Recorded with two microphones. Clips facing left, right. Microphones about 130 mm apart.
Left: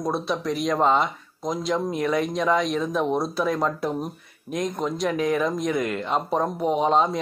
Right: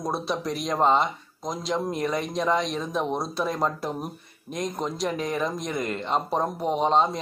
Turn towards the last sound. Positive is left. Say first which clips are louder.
# left 2 dB
turn(degrees=0)  # may be behind; listen again after turning